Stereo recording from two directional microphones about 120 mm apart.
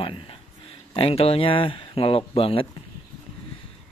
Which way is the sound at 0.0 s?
45° left (ahead or behind).